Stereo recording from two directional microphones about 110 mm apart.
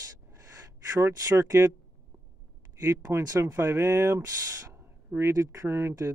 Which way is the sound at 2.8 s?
25° right (ahead or behind).